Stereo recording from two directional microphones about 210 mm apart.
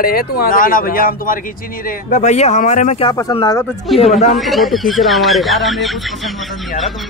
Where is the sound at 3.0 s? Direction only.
20° left (ahead or behind).